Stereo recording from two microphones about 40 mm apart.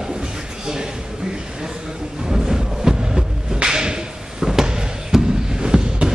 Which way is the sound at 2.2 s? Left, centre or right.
Centre.